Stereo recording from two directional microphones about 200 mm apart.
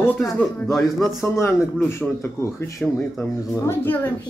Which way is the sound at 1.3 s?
15° left (ahead or behind).